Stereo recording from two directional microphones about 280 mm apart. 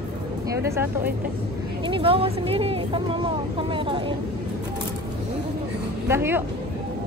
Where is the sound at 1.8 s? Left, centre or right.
Centre.